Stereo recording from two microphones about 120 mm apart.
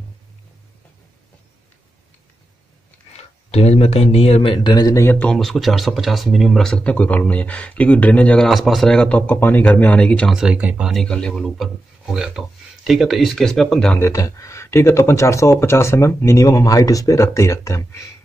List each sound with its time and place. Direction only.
3.2 s speech: 60° left (ahead or behind); by 5.0 s 35° left (ahead or behind)
5.0 s speech: 15° left (ahead or behind)
5.3 s speech: centre (ahead or behind)
8.5 s speech: centre (ahead or behind)
10.3 s speech: 5° right (ahead or behind)
10.9 s speech: 5° left (ahead or behind)
13.9 s speech: 25° left (ahead or behind)